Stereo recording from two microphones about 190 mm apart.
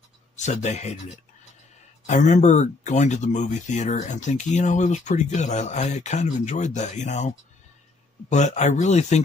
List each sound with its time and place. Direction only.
0.4 s speech: 40° left (ahead or behind)
2.0 s speech: 40° left (ahead or behind)